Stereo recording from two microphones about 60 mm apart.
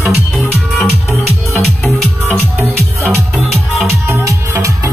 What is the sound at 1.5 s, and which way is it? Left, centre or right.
Music, centre.